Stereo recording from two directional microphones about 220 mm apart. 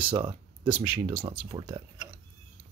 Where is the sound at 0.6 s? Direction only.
5° right (ahead or behind).